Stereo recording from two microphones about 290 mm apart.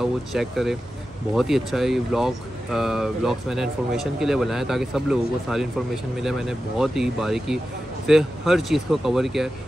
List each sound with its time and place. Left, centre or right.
0.0 s speech: centre